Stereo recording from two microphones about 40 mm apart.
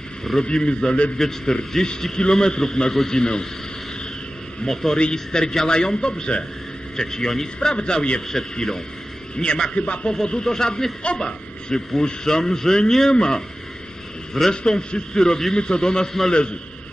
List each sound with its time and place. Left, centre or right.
0.4 s speech: left
1.1 s a man's voice: centre
4.6 s a man's voice: centre
8.3 s a man's voice: centre
9.4 s a man's voice: left
14.5 s a man's voice: left